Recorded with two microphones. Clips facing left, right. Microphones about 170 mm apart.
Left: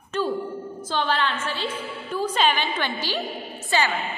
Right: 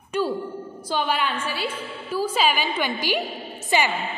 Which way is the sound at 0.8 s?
10° right (ahead or behind).